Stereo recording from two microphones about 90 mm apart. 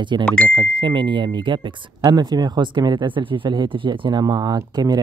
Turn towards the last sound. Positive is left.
turn(degrees=-45)  # may be behind; listen again after turning